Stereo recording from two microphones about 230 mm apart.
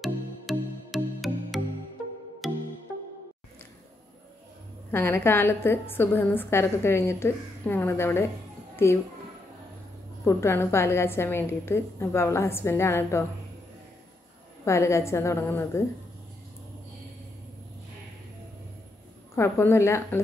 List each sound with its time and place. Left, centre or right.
0.0 s music: centre
4.9 s a woman's voice: centre
10.2 s a woman's voice: centre
14.6 s a woman's voice: centre
19.3 s a woman's voice: centre